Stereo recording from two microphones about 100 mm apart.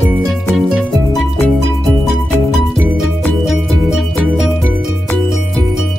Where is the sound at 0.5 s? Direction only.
Centre (ahead or behind).